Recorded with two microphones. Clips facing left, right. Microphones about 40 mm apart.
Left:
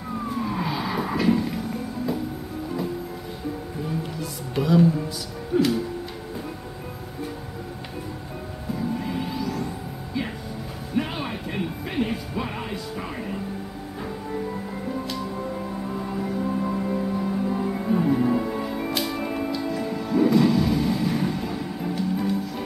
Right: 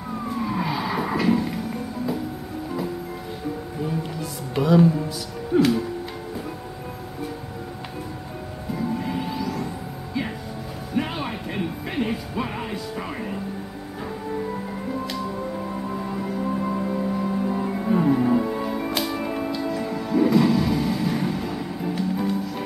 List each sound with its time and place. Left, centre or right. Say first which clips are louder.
0.4 s music: right 2 dB; centre
4.2 s music: right 3 dB; centre
5.5 s speech: right 2 dB; right
8.7 s music: right 2 dB; centre
11.0 s music: right 1 dB; centre
16.1 s music: left 1 dB; centre